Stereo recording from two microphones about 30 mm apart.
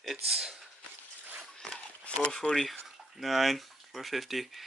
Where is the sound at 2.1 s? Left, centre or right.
Left.